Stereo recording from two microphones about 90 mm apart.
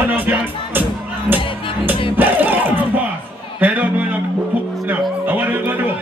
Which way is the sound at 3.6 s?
15° right (ahead or behind).